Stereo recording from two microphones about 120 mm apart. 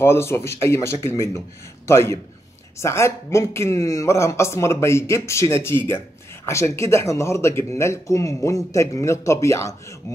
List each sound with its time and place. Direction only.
0.0 s speech: 20° left (ahead or behind)